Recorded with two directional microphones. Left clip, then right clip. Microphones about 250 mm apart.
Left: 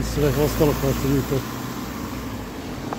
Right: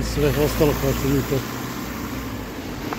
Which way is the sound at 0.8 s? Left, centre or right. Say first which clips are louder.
Right 1 dB; left.